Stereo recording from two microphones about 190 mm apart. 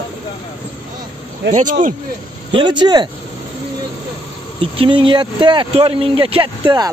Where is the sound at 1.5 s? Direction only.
45° right (ahead or behind).